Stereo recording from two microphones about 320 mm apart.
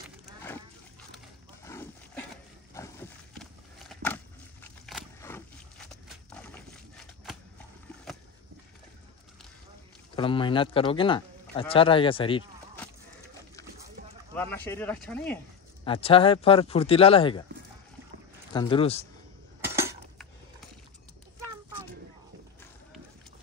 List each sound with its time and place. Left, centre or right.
1.1 s a sound: centre
10.1 s speech: centre
14.3 s speech: centre
15.8 s speech: centre
18.5 s speech: centre
19.7 s cutlery: centre